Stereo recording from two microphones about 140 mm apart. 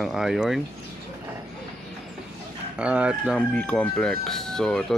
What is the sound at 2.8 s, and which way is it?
Speech, 10° right (ahead or behind).